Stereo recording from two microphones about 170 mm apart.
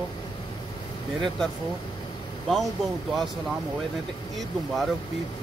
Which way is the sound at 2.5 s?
Centre (ahead or behind).